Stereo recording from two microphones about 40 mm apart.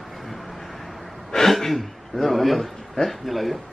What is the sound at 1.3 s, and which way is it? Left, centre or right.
A man's voice, centre.